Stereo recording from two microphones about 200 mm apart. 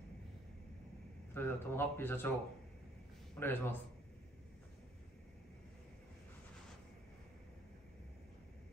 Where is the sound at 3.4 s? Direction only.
10° left (ahead or behind).